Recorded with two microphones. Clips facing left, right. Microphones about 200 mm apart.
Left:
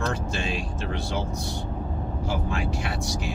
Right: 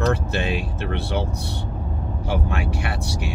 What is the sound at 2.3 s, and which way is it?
Speech, 65° right (ahead or behind).